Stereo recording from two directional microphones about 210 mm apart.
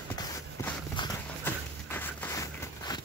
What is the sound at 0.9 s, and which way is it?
Horse, 15° left (ahead or behind).